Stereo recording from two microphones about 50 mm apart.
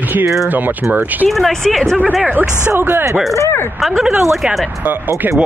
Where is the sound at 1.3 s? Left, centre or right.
Centre.